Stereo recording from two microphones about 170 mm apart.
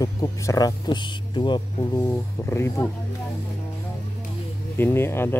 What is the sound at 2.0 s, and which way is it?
Speech, 15° left (ahead or behind).